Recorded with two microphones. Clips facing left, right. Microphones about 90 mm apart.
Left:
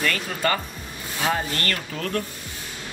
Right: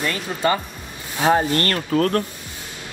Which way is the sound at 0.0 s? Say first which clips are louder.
Right 3 dB; 20° right (ahead or behind).